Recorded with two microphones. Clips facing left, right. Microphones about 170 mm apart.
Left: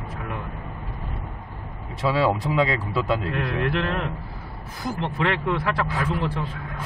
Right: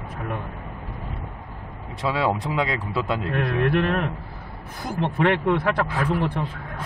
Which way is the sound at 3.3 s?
55° right (ahead or behind).